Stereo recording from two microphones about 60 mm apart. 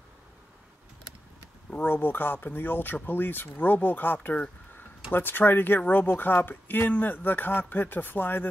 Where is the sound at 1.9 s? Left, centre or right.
Left.